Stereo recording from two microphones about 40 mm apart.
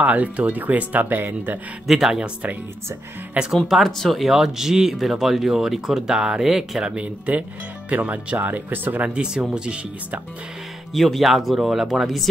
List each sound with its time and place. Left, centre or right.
0.0 s speech: right
1.9 s speech: centre
3.4 s speech: right
3.8 s speech: centre
4.2 s speech: centre
7.0 s speech: right
9.1 s speech: right
10.9 s speech: centre